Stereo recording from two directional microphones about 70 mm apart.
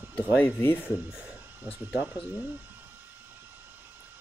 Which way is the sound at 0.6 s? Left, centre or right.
Left.